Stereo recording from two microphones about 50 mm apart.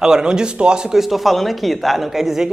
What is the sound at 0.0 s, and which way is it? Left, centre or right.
Speech, centre.